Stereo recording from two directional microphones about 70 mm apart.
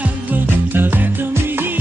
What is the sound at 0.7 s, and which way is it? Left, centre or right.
Music, right.